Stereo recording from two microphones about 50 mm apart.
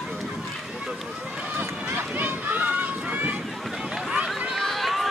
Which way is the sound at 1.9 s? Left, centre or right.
Right.